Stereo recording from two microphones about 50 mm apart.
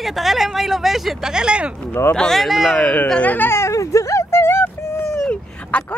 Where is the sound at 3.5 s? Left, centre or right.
Left.